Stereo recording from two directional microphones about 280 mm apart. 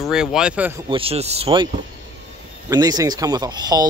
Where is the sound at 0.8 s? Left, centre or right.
Centre.